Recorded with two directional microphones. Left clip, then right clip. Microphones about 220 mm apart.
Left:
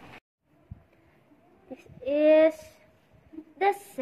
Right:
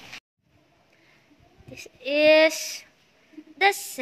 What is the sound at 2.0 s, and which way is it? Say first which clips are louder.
Speech: right 3 dB; 5° right (ahead or behind).